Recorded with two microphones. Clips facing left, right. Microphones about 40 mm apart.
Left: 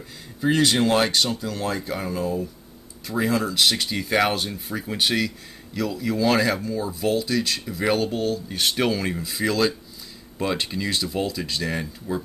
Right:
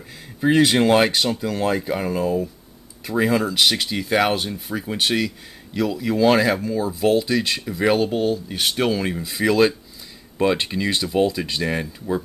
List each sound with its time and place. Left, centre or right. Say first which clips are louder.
0.4 s speech: right 4 dB; right
9.4 s speech: right 5 dB; centre